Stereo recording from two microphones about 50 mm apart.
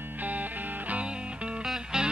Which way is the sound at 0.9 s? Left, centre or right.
Right.